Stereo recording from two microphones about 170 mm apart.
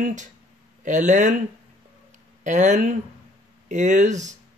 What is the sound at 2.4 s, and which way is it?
Speech, 45° right (ahead or behind).